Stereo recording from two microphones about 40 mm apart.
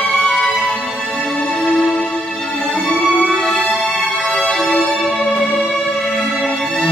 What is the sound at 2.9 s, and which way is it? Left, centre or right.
Music, left.